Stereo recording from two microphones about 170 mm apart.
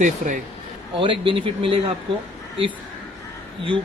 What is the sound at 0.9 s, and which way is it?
Speech, 30° right (ahead or behind).